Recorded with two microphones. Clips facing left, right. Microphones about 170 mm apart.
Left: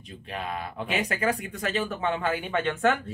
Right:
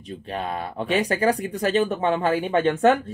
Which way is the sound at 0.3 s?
35° right (ahead or behind).